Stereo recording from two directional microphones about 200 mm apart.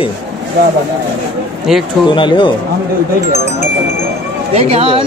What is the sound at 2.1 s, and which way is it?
Speech, 25° left (ahead or behind).